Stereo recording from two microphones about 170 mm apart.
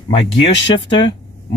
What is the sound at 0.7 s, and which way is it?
Speech, 30° left (ahead or behind).